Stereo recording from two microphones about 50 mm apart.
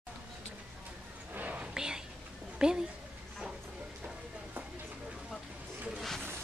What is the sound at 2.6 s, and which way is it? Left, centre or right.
Speech, centre.